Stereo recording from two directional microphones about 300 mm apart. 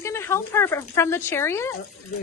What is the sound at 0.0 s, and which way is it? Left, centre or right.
Speech, centre.